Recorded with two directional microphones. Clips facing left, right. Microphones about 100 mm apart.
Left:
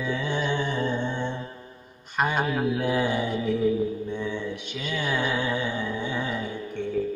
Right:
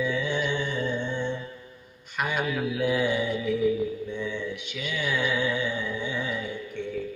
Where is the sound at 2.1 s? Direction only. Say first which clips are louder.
Left 3 dB; 35° left (ahead or behind).